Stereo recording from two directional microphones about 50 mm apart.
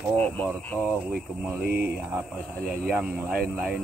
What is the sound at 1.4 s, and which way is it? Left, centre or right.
Speech, right.